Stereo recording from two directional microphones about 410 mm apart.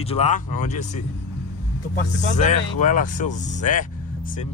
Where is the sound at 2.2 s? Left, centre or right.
Centre.